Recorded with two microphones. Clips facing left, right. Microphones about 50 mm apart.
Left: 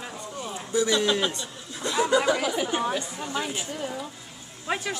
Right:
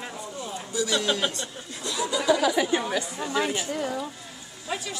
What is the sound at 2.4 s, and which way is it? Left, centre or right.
Speech, right.